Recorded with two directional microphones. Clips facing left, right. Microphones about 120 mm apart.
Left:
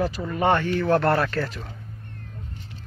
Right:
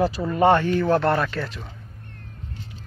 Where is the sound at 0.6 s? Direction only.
15° right (ahead or behind).